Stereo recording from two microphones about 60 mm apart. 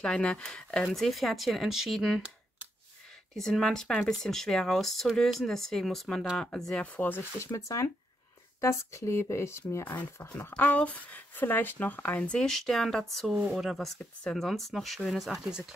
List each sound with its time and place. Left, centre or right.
0.0 s speech: centre
0.9 s speech: centre
3.3 s speech: centre
6.8 s speech: left
7.3 s speech: left
10.6 s speech: left
12.3 s speech: centre